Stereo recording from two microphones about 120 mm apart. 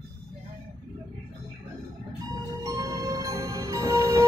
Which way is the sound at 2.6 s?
30° right (ahead or behind).